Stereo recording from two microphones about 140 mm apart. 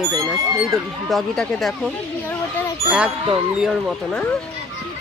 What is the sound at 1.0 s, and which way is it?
Speech, centre (ahead or behind).